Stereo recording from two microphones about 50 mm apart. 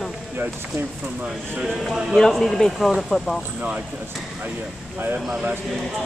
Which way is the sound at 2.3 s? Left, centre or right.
Centre.